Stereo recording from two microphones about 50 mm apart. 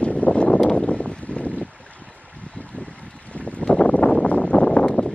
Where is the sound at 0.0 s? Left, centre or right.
Left.